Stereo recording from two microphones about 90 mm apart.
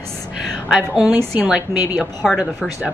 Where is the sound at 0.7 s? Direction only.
5° right (ahead or behind).